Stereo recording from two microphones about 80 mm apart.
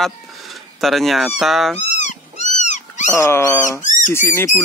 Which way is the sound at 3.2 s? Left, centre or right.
Left.